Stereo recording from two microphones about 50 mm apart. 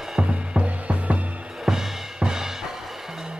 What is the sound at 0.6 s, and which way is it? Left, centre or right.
Music, right.